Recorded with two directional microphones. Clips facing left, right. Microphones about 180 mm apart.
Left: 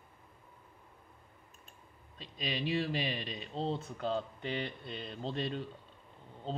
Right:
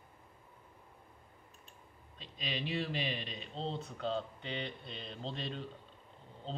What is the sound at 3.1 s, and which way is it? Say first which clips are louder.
Speech: left 2 dB; 45° left (ahead or behind).